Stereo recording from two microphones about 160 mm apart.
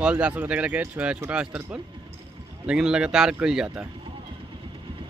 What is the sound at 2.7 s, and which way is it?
A man's voice, 5° right (ahead or behind).